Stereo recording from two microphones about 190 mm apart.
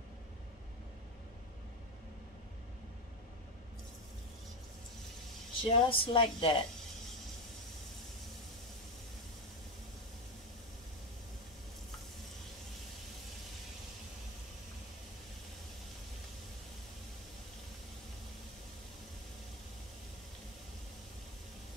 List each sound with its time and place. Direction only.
5.6 s a woman's voice: 30° left (ahead or behind)